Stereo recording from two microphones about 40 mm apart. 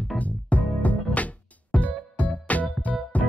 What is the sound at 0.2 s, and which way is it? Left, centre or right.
Music, left.